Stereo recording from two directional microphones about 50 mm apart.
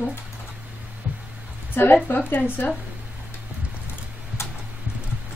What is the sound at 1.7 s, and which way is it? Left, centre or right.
Speech, left.